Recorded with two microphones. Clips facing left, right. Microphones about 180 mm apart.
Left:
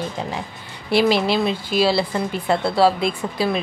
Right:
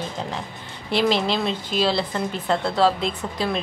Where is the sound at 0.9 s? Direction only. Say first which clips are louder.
Left 4 dB; 10° left (ahead or behind).